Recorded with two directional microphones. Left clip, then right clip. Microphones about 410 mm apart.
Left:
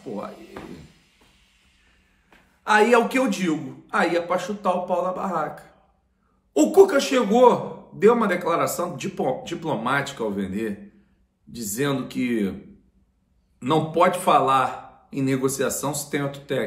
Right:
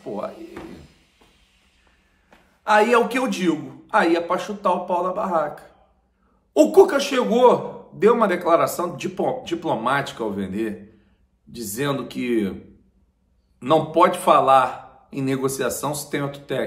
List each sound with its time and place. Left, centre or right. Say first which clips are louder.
2.6 s a man's voice: right 1 dB; centre
13.6 s a man's voice: right 3 dB; centre